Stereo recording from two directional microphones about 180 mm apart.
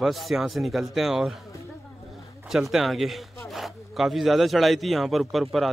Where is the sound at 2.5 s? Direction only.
Centre (ahead or behind).